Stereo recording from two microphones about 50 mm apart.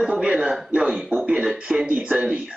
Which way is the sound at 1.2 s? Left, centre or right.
Centre.